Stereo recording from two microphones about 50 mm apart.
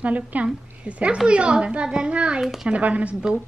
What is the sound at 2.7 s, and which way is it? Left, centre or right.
Speech, right.